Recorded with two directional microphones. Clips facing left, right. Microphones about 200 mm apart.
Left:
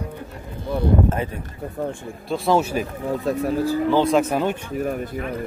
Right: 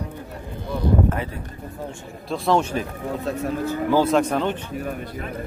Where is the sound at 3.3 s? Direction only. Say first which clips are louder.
Left 4 dB; 35° left (ahead or behind).